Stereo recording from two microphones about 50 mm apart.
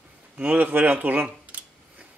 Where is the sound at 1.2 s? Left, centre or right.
Right.